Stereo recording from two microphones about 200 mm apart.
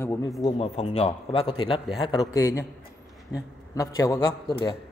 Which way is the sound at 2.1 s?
15° left (ahead or behind).